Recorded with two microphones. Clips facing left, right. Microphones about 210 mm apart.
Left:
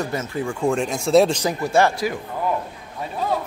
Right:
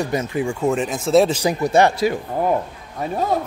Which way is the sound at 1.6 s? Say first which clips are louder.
Right 3 dB; 20° right (ahead or behind).